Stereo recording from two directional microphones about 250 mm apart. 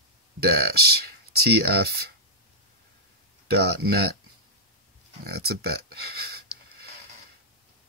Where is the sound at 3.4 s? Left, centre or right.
Right.